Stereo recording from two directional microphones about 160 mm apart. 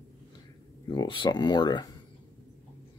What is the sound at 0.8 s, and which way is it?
Speech, 30° left (ahead or behind).